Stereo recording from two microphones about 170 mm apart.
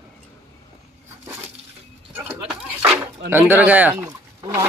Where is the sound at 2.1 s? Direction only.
10° right (ahead or behind).